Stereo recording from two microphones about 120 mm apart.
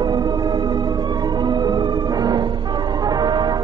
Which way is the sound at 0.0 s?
35° right (ahead or behind).